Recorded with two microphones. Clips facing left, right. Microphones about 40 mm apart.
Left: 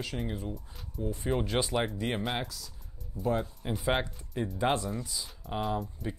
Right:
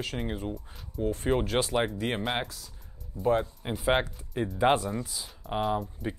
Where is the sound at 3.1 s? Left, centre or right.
Right.